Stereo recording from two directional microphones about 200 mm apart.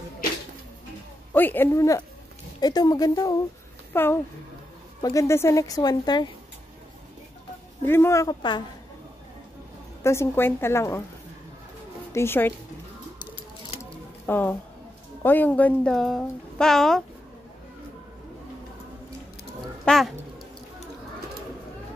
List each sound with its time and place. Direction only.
1.3 s speech: 10° left (ahead or behind)
7.8 s speech: 10° left (ahead or behind)
10.0 s speech: 10° left (ahead or behind)
12.1 s speech: 10° left (ahead or behind)
14.2 s speech: 10° left (ahead or behind)
19.8 s speech: centre (ahead or behind)